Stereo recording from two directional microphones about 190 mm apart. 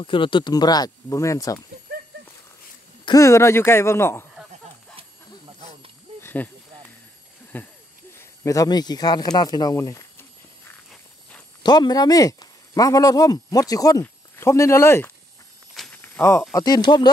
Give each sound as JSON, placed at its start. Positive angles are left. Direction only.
{"t": 0.0, "sound": "speech", "side_deg": 25}
{"t": 3.1, "sound": "speech", "side_deg": 15}
{"t": 6.2, "sound": "a sound", "side_deg": 10}
{"t": 7.5, "sound": "a sound", "side_deg": 10}
{"t": 8.1, "sound": "speech", "side_deg": 15}
{"t": 11.6, "sound": "speech", "side_deg": 20}
{"t": 15.7, "sound": "walk", "side_deg": 0}
{"t": 16.0, "sound": "a sound", "side_deg": 15}
{"t": 16.5, "sound": "speech", "side_deg": 20}